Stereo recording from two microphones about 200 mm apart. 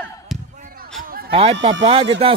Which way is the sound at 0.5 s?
45° right (ahead or behind).